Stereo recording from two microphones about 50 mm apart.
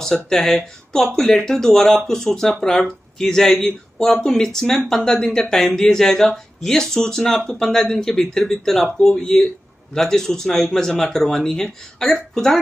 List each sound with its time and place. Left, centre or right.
0.0 s speech: centre